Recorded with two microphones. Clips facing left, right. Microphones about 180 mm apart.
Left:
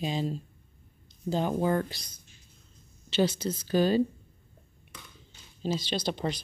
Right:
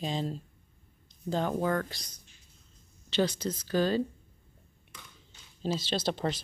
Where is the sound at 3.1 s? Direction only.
10° left (ahead or behind).